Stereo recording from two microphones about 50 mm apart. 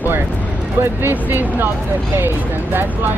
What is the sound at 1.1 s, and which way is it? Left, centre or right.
Speech, right.